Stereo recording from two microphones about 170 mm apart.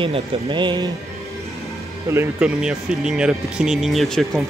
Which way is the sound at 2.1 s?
10° right (ahead or behind).